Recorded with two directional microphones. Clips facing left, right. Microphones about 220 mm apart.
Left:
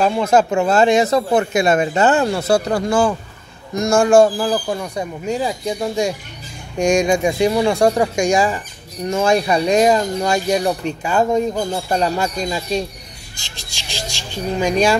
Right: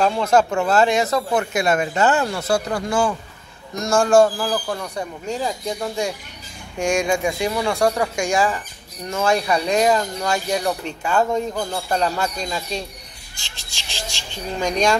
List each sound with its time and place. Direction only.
0.0 s speech: 5° left (ahead or behind)
0.3 s speech: 20° left (ahead or behind)
3.7 s speech: 15° left (ahead or behind)
13.6 s a sound: 15° left (ahead or behind)